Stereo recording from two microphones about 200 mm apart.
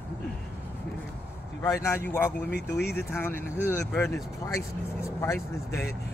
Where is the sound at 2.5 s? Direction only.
55° left (ahead or behind).